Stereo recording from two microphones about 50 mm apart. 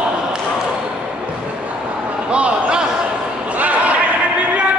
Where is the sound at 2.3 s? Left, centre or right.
Right.